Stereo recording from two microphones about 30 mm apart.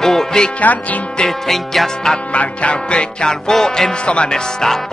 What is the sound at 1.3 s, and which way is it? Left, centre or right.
Speech, centre.